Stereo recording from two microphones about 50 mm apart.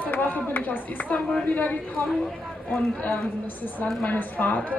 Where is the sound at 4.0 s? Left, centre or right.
Left.